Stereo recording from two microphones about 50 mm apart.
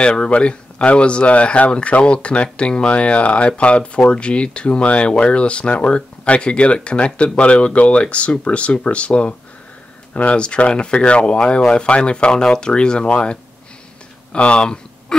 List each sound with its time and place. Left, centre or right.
0.0 s speech: centre
14.3 s speech: left